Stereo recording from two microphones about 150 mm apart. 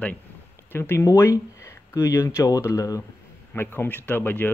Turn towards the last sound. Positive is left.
turn(degrees=15)  # may be behind; listen again after turning